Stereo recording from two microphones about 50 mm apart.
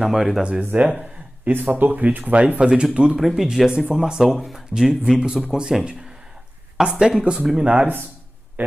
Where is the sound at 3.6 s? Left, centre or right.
Centre.